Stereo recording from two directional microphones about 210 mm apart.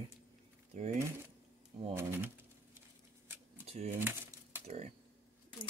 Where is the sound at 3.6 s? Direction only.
30° right (ahead or behind).